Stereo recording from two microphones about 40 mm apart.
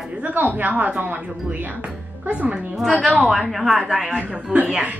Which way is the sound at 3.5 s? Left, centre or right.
Centre.